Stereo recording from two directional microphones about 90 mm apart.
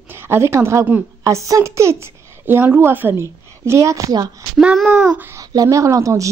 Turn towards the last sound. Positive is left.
turn(degrees=-40)  # may be behind; listen again after turning